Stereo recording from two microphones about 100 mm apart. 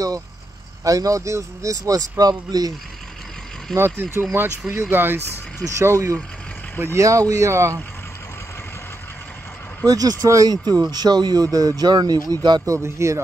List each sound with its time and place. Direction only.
0.8 s speech: 35° right (ahead or behind)
3.7 s speech: 25° right (ahead or behind)
9.8 s speech: 35° right (ahead or behind)
12.6 s speech: 30° right (ahead or behind)